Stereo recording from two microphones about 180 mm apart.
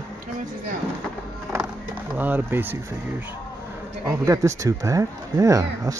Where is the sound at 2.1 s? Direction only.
10° right (ahead or behind).